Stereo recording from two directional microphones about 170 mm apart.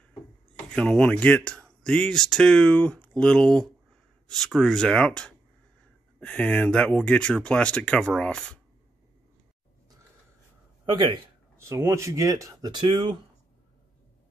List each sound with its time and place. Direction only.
0.7 s speech: 5° left (ahead or behind)
10.9 s speech: 30° right (ahead or behind)
11.5 s speech: 15° right (ahead or behind)